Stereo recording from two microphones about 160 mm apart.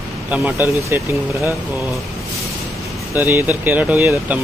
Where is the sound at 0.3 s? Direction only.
10° right (ahead or behind).